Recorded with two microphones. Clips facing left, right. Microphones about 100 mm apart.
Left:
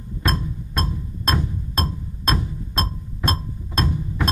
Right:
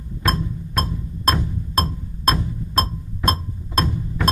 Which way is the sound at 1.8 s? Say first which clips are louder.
Right 4 dB; centre (ahead or behind).